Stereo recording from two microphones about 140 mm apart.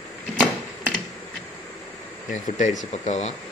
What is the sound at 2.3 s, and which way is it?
Speech, 60° left (ahead or behind).